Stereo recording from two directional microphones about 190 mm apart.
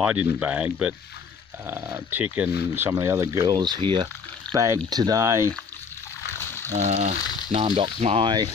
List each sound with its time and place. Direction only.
0.0 s speech: 5° right (ahead or behind)
6.3 s a sound: 15° left (ahead or behind)
6.7 s speech: 35° right (ahead or behind)